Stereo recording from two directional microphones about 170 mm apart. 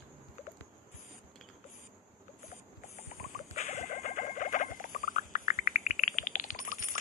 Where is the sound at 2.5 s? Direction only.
45° left (ahead or behind).